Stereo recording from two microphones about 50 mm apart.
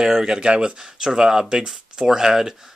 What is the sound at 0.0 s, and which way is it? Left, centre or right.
Speech, centre.